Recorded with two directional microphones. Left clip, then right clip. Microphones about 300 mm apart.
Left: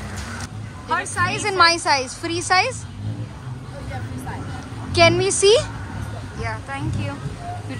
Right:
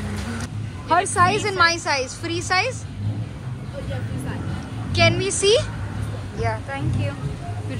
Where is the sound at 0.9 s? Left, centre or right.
Centre.